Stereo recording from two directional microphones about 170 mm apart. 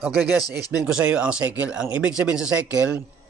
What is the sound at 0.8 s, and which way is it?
Speech, 5° right (ahead or behind).